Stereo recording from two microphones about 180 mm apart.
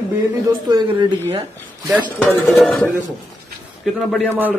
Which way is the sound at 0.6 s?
25° right (ahead or behind).